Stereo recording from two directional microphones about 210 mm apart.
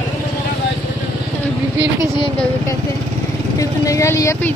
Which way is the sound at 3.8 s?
15° left (ahead or behind).